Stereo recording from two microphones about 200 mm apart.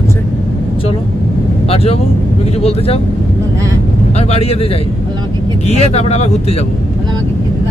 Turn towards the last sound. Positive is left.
turn(degrees=35)  # may be behind; listen again after turning